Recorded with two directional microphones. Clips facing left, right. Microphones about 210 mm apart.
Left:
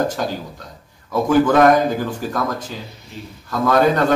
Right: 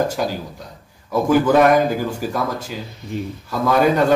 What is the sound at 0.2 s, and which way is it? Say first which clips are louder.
Speech: right 1 dB; 10° right (ahead or behind).